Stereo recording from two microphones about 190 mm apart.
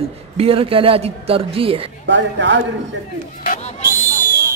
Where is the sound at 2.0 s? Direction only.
70° right (ahead or behind).